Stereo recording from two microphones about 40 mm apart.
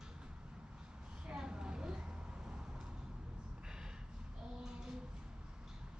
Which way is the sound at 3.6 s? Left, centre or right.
Centre.